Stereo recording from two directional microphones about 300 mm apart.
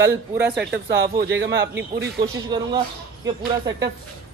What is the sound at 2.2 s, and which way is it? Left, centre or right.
Speech, centre.